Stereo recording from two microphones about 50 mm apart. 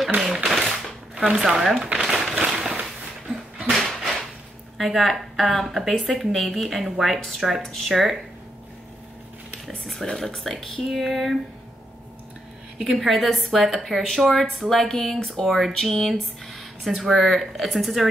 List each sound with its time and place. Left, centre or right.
1.1 s chopping: centre
1.4 s speech: centre
2.0 s a sound: centre
3.7 s a sound: centre
4.7 s speech: centre
10.0 s speech: centre
12.7 s a woman's voice: centre